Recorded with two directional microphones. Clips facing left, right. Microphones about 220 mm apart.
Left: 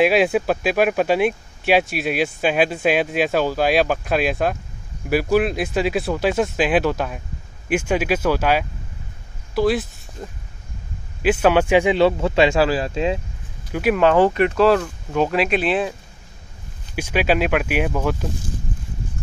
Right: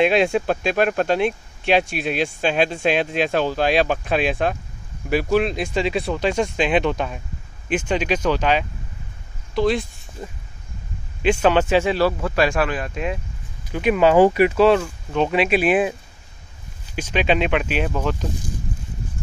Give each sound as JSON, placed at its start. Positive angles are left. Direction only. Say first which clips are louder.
{"t": 0.0, "sound": "speech", "louder": "left 1 dB", "side_deg": 5}
{"t": 13.7, "sound": "speech", "louder": "even", "side_deg": 5}
{"t": 14.1, "sound": "speech", "louder": "right 2 dB", "side_deg": -10}
{"t": 15.6, "sound": "speech", "louder": "right 3 dB", "side_deg": -10}
{"t": 16.9, "sound": "speech", "louder": "left 1 dB", "side_deg": 10}